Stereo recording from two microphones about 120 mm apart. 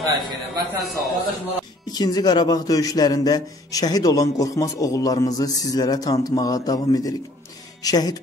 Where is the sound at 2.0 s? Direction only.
35° left (ahead or behind).